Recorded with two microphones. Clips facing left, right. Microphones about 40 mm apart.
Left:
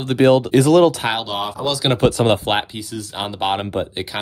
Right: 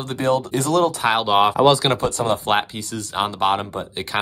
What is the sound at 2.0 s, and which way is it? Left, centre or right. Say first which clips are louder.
Speech: left 5 dB; left.